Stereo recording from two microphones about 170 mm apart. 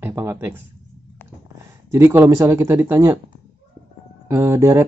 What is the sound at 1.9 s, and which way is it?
Speech, 15° right (ahead or behind).